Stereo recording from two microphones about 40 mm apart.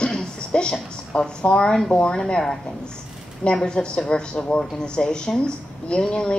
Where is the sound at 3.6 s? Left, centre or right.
Left.